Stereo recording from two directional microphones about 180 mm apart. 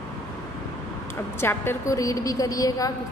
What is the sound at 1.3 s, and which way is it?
A woman's voice, 15° left (ahead or behind).